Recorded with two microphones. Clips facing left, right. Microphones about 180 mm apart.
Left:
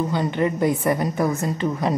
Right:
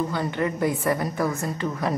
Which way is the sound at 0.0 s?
20° left (ahead or behind).